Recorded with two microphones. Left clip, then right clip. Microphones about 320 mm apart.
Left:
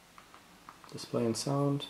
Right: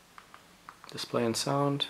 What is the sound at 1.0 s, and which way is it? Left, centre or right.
Speech, centre.